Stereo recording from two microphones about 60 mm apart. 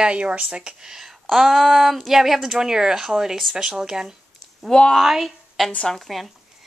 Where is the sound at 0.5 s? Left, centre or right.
Centre.